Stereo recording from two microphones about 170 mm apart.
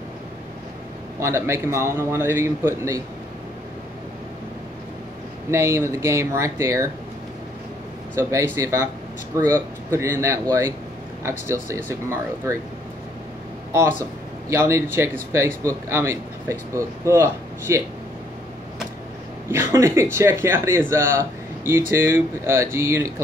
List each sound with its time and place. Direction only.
1.2 s speech: 15° right (ahead or behind)
5.5 s speech: 15° right (ahead or behind)
8.2 s speech: 15° right (ahead or behind)
13.7 s speech: 15° right (ahead or behind)
19.5 s speech: 15° right (ahead or behind)